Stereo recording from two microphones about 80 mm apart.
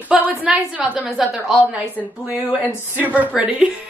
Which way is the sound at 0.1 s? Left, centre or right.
Centre.